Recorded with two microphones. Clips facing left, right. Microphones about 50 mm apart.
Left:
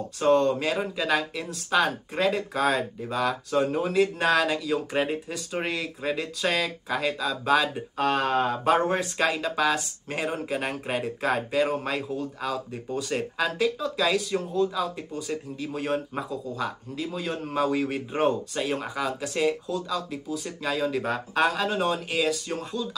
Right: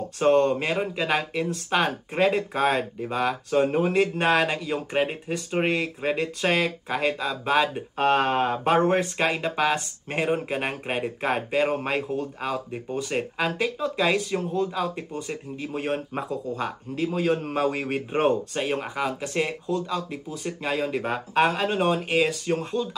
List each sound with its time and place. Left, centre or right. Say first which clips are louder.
0.2 s speech: right 1 dB; right